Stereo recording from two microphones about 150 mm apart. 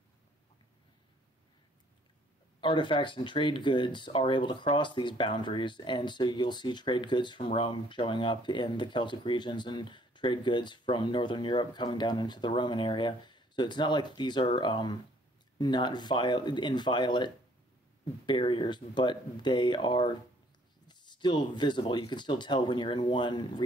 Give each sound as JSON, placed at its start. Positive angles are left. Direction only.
{"t": 2.6, "sound": "speech", "side_deg": 35}